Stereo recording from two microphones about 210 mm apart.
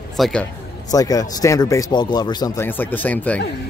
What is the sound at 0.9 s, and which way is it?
Speech, 15° left (ahead or behind).